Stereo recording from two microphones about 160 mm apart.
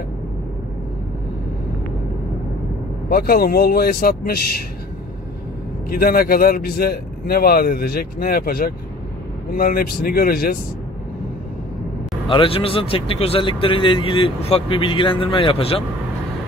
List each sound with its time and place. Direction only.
3.1 s speech: 70° left (ahead or behind)
5.9 s speech: 65° left (ahead or behind)
12.3 s speech: 35° left (ahead or behind)